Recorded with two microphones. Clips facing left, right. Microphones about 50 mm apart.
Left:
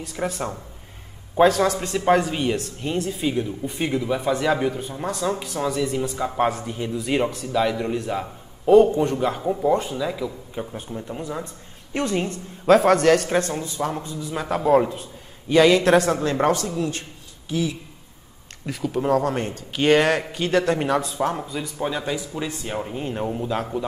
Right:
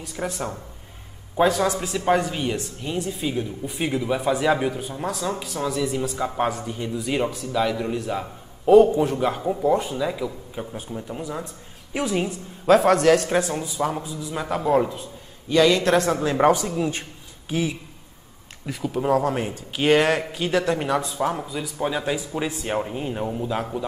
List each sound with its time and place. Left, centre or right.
0.0 s a man's voice: centre
5.4 s speech: centre
5.7 s a man's voice: centre
8.6 s a man's voice: centre; by 17.7 s right
18.7 s a man's voice: centre
22.1 s speech: centre
22.8 s a man's voice: centre